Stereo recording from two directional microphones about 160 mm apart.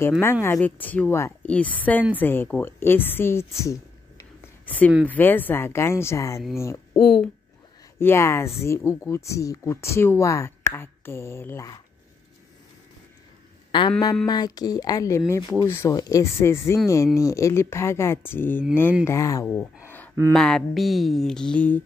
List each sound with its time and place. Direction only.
0.2 s speech: 15° left (ahead or behind)
7.0 s music: centre (ahead or behind)
8.0 s speech: 15° left (ahead or behind)
13.7 s a sound: 30° left (ahead or behind)
14.2 s speech: 25° left (ahead or behind)
20.3 s music: 5° left (ahead or behind)